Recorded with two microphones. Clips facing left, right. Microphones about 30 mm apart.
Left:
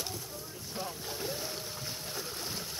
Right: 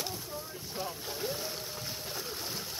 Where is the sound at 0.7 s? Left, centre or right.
Centre.